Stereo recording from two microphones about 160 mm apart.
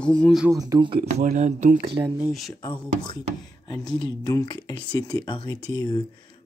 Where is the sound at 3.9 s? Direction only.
25° left (ahead or behind).